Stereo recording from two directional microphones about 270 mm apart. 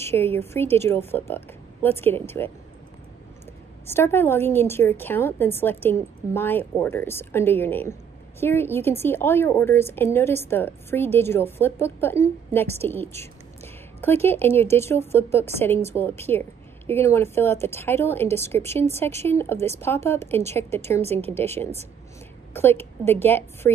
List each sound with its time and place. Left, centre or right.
0.1 s a woman's voice: centre
3.8 s a woman's voice: centre
14.0 s a woman's voice: centre
21.0 s speech: right
21.3 s a woman's voice: centre